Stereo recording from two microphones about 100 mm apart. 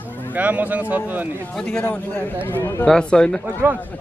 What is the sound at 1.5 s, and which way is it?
Speech, 10° left (ahead or behind).